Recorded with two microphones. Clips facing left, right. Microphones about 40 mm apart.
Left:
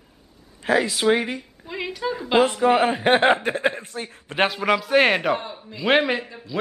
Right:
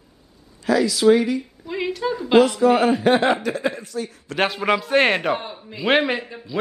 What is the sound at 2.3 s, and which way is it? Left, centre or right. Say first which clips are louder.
A woman's voice: right 2 dB; left.